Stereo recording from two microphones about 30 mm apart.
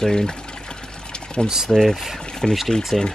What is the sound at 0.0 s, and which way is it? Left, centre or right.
Speech, left.